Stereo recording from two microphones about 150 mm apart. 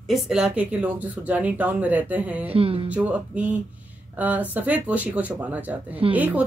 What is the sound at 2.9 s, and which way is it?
Speech, 10° right (ahead or behind).